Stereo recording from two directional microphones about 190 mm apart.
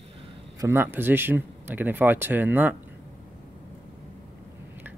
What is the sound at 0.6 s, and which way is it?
Speech, 10° right (ahead or behind).